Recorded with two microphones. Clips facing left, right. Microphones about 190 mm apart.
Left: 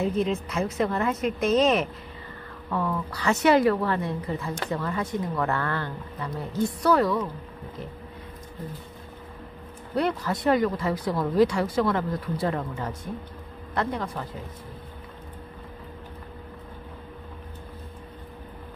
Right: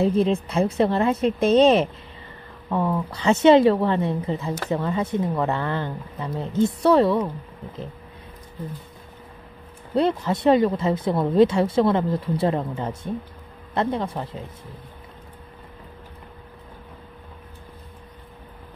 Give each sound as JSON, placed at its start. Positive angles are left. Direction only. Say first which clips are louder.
{"t": 0.0, "sound": "a woman's voice", "louder": "right 5 dB", "side_deg": -30}
{"t": 9.9, "sound": "speech", "louder": "right 5 dB", "side_deg": -25}